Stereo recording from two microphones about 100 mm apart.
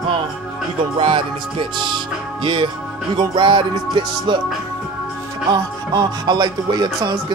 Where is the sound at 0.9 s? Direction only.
55° right (ahead or behind).